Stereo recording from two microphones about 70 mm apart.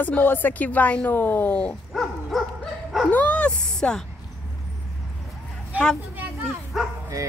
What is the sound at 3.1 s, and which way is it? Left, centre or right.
Speech, centre.